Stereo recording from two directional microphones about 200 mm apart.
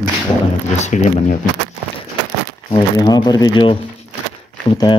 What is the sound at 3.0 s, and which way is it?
Speech, 20° left (ahead or behind).